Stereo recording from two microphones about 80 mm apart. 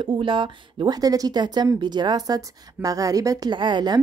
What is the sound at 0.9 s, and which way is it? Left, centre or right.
A woman's voice, right.